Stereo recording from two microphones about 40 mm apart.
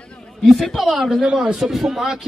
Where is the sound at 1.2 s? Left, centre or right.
Right.